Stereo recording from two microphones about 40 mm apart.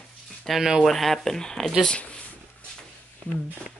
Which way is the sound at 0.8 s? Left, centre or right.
Centre.